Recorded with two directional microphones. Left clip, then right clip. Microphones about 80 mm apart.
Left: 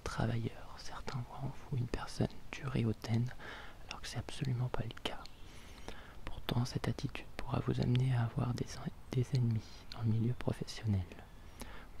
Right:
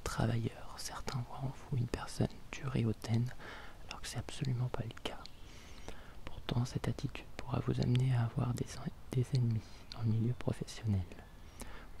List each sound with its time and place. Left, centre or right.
0.0 s speech: centre
4.5 s speech: centre